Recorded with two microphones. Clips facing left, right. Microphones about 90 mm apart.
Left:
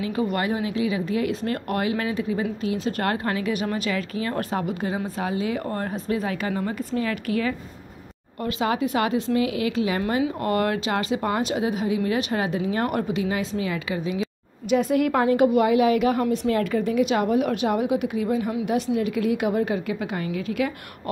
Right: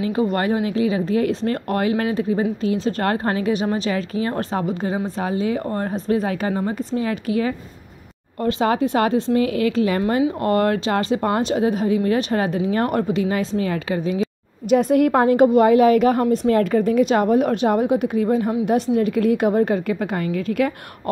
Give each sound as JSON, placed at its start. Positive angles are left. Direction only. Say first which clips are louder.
{"t": 0.0, "sound": "speech", "louder": "right 4 dB", "side_deg": -30}
{"t": 8.4, "sound": "speech", "louder": "right 5 dB", "side_deg": -35}